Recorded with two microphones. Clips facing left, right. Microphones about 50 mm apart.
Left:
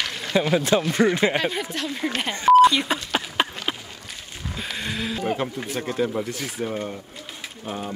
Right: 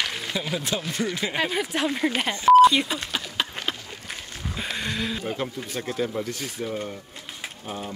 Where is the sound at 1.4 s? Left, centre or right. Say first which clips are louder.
Even; centre.